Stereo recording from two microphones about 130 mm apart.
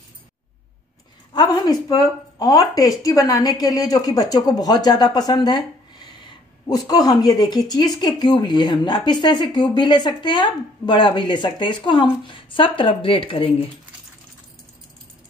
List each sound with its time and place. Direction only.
1.3 s speech: 30° left (ahead or behind)
6.7 s speech: 30° left (ahead or behind); by 13.7 s 45° left (ahead or behind)